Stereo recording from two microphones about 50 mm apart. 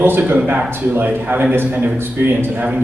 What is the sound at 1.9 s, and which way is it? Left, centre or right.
Speech, right.